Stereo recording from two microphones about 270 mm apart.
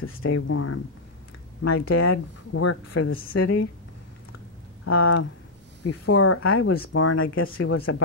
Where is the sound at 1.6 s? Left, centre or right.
Left.